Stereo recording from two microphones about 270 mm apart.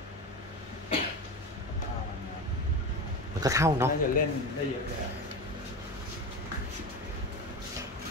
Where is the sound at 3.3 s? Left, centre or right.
Centre.